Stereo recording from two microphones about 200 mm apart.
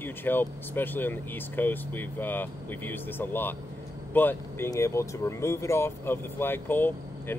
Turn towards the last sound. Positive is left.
turn(degrees=10)  # may be behind; listen again after turning